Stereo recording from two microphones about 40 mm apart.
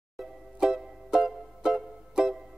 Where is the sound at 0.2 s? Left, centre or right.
Centre.